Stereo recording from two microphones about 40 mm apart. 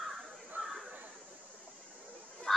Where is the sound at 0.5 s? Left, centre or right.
Right.